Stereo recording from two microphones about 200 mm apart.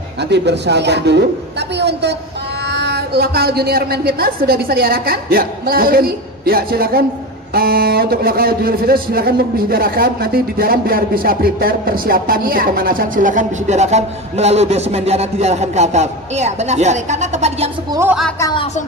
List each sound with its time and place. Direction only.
0.2 s a man's voice: 60° right (ahead or behind); by 17.6 s 35° right (ahead or behind)
18.4 s music: 25° left (ahead or behind)